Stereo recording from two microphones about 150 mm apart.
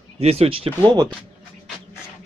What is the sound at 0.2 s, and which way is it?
Speech, 40° right (ahead or behind).